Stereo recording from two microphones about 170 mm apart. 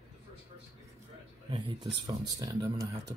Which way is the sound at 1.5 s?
25° right (ahead or behind).